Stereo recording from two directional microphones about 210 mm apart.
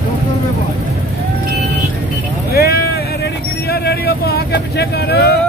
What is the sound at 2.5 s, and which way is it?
Vehicle, 45° left (ahead or behind).